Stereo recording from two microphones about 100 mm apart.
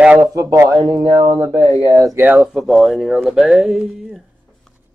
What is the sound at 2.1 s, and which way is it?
Speech, 20° right (ahead or behind).